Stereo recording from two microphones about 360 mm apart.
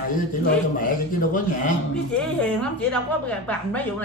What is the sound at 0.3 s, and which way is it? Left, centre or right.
A man's voice, left.